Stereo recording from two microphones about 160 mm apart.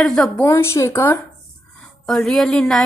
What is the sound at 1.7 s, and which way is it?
Speech, 5° left (ahead or behind).